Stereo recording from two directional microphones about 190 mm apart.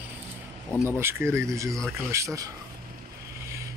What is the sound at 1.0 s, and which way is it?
Speech, 15° right (ahead or behind).